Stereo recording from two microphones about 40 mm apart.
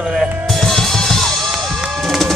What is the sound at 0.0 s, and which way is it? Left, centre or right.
Drum kit, centre.